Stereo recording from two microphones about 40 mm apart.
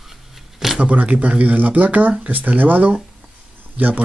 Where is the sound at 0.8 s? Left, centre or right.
Right.